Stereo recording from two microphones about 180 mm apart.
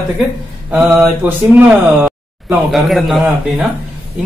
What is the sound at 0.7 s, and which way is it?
Speech, 10° right (ahead or behind).